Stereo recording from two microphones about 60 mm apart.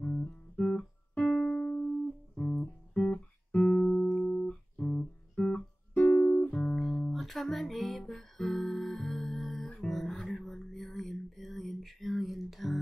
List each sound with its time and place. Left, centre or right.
0.6 s music: centre
2.3 s music: left
4.2 s guitar: centre
6.6 s music: centre